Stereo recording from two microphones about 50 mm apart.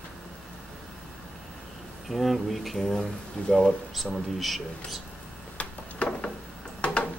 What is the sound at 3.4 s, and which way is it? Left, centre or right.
Speech, centre.